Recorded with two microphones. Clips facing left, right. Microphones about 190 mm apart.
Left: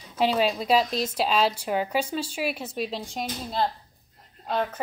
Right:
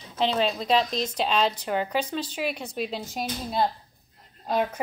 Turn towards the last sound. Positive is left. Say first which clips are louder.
# right 2 dB
turn(degrees=-10)  # may be behind; listen again after turning